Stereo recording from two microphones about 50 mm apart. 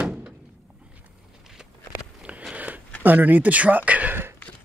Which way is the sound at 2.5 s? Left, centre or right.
Right.